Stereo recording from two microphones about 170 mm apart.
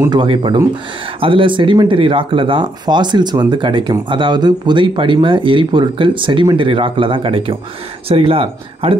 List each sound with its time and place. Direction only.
0.1 s speech: 30° right (ahead or behind)